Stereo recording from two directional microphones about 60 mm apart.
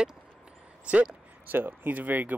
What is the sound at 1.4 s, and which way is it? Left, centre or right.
Speech, right.